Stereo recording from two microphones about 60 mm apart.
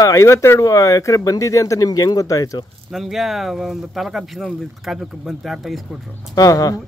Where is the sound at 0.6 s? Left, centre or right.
Left.